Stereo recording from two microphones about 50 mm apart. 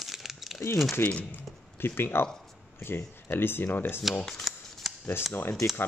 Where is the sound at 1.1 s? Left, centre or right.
Left.